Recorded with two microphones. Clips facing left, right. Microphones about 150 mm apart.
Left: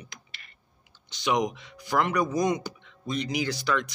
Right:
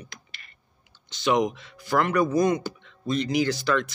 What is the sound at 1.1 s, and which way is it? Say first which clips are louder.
Speech: right 3 dB; 15° left (ahead or behind).